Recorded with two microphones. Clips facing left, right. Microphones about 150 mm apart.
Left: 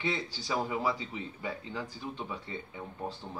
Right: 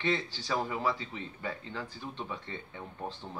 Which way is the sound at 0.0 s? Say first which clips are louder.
Right 2 dB; 10° left (ahead or behind).